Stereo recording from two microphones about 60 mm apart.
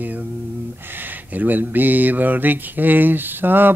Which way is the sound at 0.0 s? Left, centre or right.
Right.